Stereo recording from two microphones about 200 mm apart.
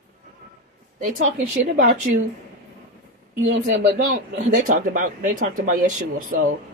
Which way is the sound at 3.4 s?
55° right (ahead or behind).